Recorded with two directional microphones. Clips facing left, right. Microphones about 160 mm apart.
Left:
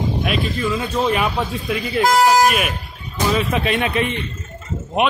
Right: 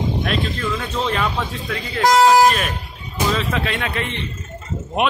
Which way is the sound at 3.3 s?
20° left (ahead or behind).